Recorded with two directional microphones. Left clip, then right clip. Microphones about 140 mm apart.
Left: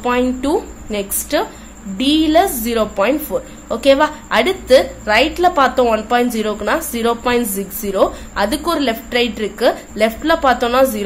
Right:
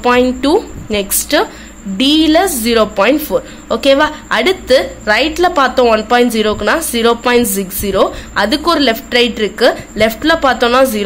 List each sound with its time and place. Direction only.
0.0 s a woman's voice: 20° right (ahead or behind)